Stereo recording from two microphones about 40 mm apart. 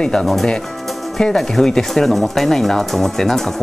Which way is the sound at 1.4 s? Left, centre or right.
Centre.